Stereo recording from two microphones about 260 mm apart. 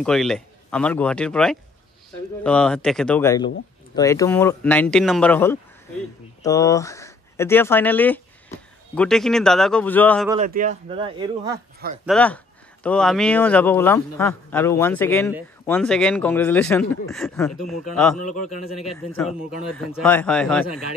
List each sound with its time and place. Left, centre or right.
0.0 s a man's voice: centre
10.4 s speech: right
12.1 s a man's voice: centre
20.0 s speech: centre